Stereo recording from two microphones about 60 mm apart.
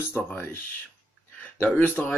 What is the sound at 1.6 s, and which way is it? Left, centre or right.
Speech, left.